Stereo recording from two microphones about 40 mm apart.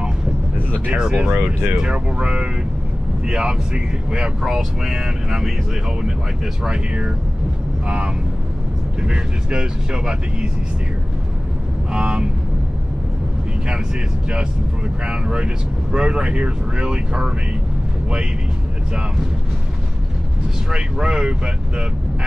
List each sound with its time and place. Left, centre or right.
0.9 s speech: centre
9.0 s speech: right
11.9 s speech: right
15.0 s speech: right
20.7 s speech: right